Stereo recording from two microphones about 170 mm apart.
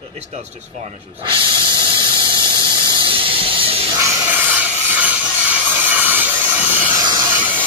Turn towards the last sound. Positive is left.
turn(degrees=-10)  # may be behind; listen again after turning